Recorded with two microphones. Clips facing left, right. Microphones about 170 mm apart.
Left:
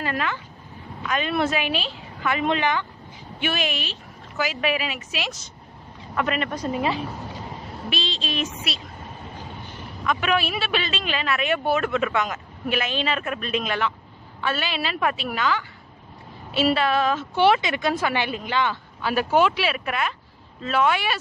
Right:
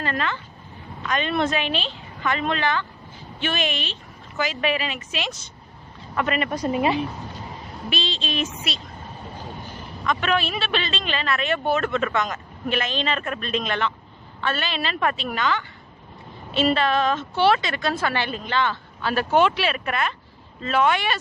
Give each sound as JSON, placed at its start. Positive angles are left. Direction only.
{"t": 0.0, "sound": "a woman's voice", "side_deg": 10}
{"t": 6.5, "sound": "speech", "side_deg": -15}
{"t": 7.9, "sound": "a woman's voice", "side_deg": 0}
{"t": 10.0, "sound": "a man's voice", "side_deg": 10}